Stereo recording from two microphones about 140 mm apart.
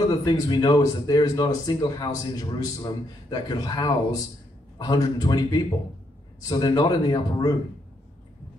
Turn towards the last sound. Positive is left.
turn(degrees=30)  # may be behind; listen again after turning